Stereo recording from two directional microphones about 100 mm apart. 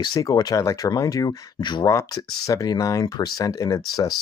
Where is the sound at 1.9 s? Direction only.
35° left (ahead or behind).